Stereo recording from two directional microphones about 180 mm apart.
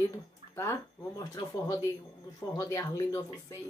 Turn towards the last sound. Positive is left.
turn(degrees=15)  # may be behind; listen again after turning